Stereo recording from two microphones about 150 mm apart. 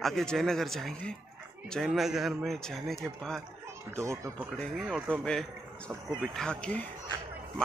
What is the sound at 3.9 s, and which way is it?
Speech, 20° right (ahead or behind).